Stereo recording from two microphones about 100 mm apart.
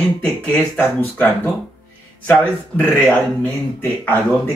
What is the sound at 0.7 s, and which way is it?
Speech, 20° left (ahead or behind).